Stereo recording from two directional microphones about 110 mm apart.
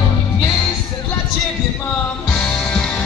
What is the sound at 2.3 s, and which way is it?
Music, 10° left (ahead or behind).